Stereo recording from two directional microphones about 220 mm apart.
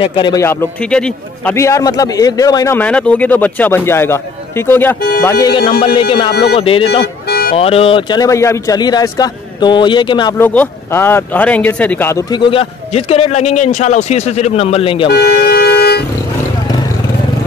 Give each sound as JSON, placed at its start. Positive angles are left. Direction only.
{"t": 0.0, "sound": "a man's voice", "side_deg": 20}
{"t": 6.9, "sound": "music", "side_deg": 50}
{"t": 7.5, "sound": "speech", "side_deg": 25}
{"t": 10.3, "sound": "speech", "side_deg": 10}
{"t": 15.0, "sound": "vehicle", "side_deg": 45}